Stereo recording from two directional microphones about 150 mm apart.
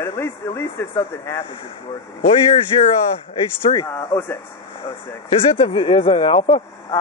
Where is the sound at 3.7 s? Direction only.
20° left (ahead or behind).